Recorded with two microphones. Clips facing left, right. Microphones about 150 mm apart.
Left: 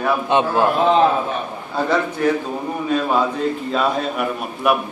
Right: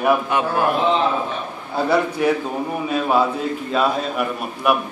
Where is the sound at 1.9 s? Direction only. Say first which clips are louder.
Right 1 dB; 10° right (ahead or behind).